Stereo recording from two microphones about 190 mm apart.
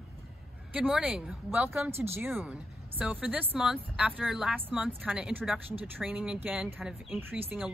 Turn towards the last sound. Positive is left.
turn(degrees=-10)  # may be behind; listen again after turning